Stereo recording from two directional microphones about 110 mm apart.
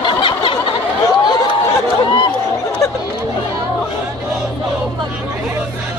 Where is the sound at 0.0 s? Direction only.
50° left (ahead or behind).